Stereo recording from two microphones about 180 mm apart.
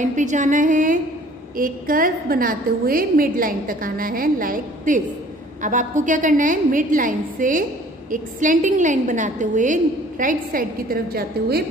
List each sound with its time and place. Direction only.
0.0 s a woman's voice: 45° right (ahead or behind)